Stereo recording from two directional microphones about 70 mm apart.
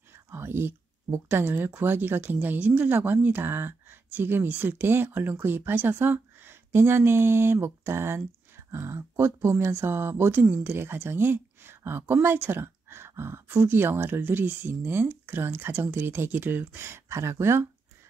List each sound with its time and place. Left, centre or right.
0.3 s speech: right